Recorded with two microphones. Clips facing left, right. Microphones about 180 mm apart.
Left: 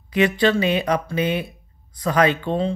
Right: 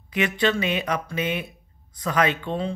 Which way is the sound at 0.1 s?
35° left (ahead or behind).